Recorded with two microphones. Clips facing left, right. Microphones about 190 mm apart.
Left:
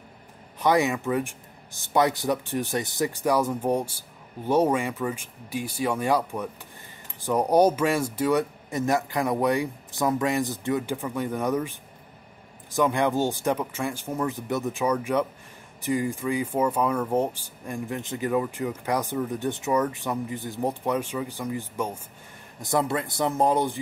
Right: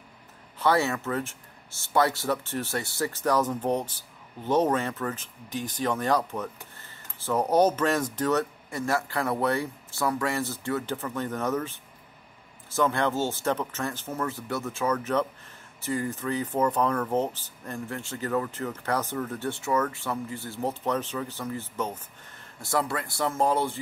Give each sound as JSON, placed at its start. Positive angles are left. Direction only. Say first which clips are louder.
{"t": 0.6, "sound": "speech", "louder": "left 2 dB", "side_deg": 15}